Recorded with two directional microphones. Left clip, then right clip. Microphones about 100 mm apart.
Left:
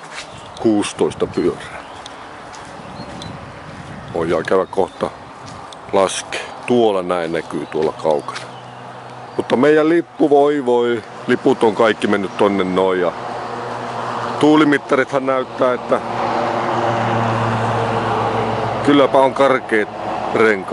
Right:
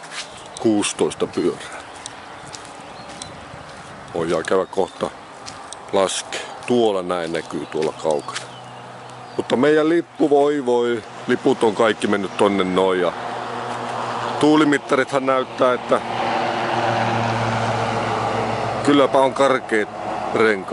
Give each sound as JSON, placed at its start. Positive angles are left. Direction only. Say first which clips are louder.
{"t": 0.7, "sound": "speech", "louder": "left 2 dB", "side_deg": -10}
{"t": 4.2, "sound": "speech", "louder": "left 3 dB", "side_deg": -10}
{"t": 13.9, "sound": "a sound", "louder": "left 2 dB", "side_deg": -25}
{"t": 14.4, "sound": "speech", "louder": "left 3 dB", "side_deg": -5}
{"t": 15.2, "sound": "vehicle", "louder": "left 1 dB", "side_deg": -15}